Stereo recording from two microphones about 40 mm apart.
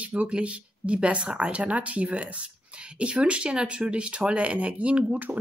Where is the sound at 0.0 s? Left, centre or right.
Right.